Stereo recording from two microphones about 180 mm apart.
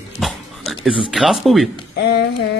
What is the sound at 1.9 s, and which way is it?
Speech, 70° left (ahead or behind).